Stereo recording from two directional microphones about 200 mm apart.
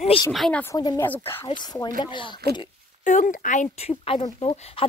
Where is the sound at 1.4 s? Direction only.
20° left (ahead or behind).